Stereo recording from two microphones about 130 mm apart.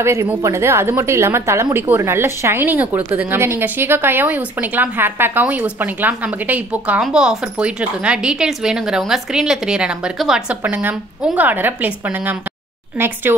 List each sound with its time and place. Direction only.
0.0 s a woman's voice: 20° right (ahead or behind)